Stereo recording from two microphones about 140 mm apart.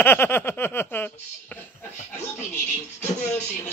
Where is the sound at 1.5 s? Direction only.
15° left (ahead or behind).